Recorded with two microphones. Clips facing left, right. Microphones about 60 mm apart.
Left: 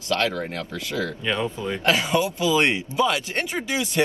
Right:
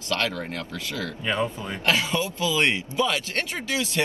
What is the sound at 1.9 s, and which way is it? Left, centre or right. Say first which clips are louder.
Speech: left 3 dB; left.